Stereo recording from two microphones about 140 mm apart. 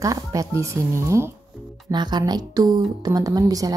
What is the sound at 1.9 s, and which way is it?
Speech, 30° right (ahead or behind).